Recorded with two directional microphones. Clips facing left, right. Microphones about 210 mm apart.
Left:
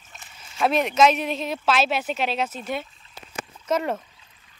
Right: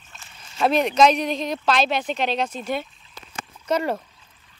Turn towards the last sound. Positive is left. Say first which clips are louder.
# right 1 dB
turn(degrees=0)  # may be behind; listen again after turning